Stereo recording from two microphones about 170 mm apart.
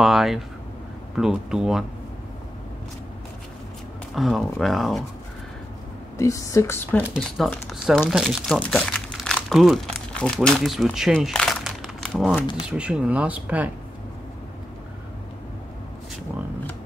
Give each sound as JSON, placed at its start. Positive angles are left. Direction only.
{"t": 0.0, "sound": "speech", "side_deg": 0}
{"t": 4.1, "sound": "speech", "side_deg": 0}
{"t": 6.1, "sound": "speech", "side_deg": 20}
{"t": 7.2, "sound": "speech", "side_deg": 5}